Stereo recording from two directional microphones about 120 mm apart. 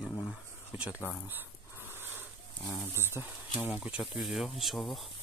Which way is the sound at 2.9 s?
20° right (ahead or behind).